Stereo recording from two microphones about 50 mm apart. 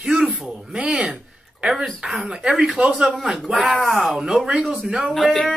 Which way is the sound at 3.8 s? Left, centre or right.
Centre.